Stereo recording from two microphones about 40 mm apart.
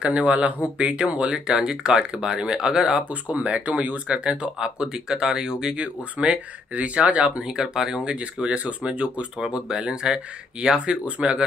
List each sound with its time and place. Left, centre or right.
0.1 s speech: right
1.3 s speech: centre
3.1 s speech: right
4.2 s speech: right
5.8 s speech: right
7.4 s speech: centre
8.0 s speech: right
9.5 s speech: centre
10.9 s speech: right